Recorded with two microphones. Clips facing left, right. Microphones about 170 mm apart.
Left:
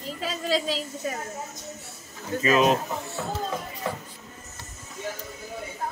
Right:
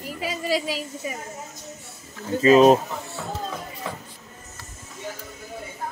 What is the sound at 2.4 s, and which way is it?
Speech, 35° right (ahead or behind).